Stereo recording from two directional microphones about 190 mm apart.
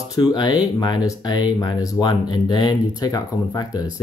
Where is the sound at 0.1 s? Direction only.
20° left (ahead or behind).